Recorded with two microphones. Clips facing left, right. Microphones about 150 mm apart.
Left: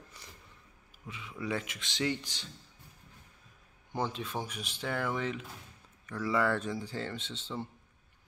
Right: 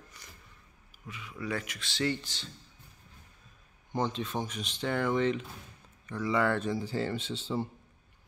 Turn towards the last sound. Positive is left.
turn(degrees=-5)  # may be behind; listen again after turning